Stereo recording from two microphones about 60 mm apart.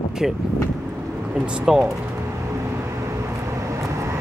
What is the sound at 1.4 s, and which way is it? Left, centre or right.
Speech, centre.